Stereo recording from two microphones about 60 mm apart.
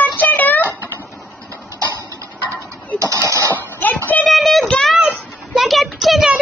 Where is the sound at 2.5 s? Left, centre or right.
Right.